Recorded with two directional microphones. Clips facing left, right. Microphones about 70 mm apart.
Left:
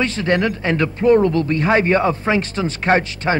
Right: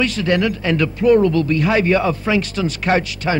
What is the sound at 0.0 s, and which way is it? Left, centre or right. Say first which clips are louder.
A man's voice: right 1 dB; left.